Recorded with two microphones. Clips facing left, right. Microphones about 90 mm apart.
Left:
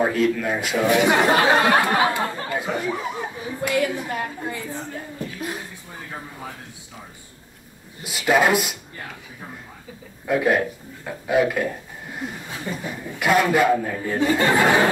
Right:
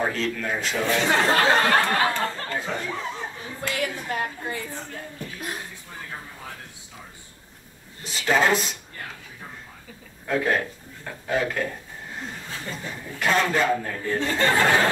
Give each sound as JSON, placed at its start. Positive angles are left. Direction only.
{"t": 0.0, "sound": "a woman's voice", "side_deg": 10}
{"t": 8.0, "sound": "speech", "side_deg": 10}
{"t": 10.2, "sound": "speech", "side_deg": 10}